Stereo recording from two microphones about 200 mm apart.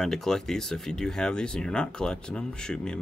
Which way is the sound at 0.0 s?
Centre (ahead or behind).